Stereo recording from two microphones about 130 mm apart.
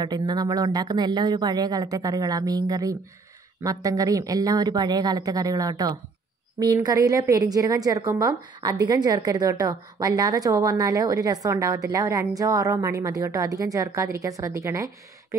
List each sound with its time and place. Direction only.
0.0 s a woman's voice: 35° right (ahead or behind)